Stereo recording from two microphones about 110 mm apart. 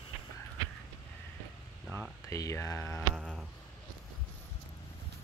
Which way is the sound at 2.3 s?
30° left (ahead or behind).